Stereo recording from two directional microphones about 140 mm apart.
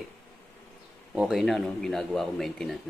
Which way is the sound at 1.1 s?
Centre (ahead or behind).